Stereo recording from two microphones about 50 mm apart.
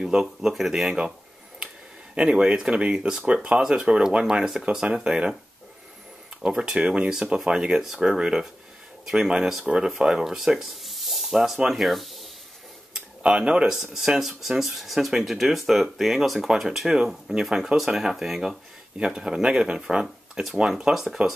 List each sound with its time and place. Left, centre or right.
0.0 s speech: centre
2.1 s speech: centre
6.5 s speech: centre
13.2 s speech: centre
18.9 s speech: centre